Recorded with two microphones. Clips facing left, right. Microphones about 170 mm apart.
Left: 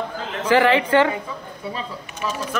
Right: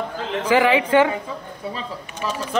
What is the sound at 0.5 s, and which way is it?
Speech, 15° right (ahead or behind).